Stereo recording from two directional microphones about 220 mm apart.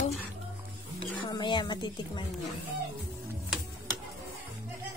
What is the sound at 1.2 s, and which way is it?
Speech, 20° left (ahead or behind).